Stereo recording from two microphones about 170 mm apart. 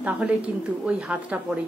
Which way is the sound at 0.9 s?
5° right (ahead or behind).